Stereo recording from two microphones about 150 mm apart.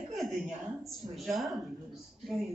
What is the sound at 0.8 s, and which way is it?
A man's voice, centre (ahead or behind).